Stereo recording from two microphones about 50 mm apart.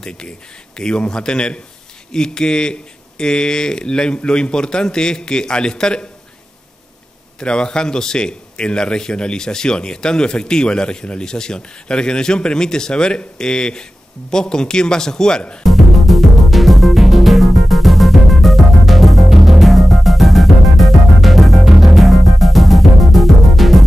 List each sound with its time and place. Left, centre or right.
0.7 s a man's voice: centre
7.3 s a man's voice: centre
15.6 s music: centre